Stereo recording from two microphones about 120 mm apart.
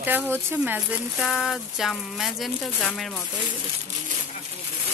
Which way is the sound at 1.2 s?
Centre (ahead or behind).